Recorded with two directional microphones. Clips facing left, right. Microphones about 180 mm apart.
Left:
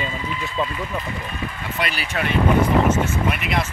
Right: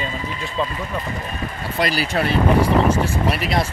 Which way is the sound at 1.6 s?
35° right (ahead or behind).